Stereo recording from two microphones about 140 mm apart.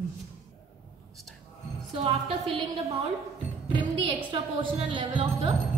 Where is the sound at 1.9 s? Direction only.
45° right (ahead or behind).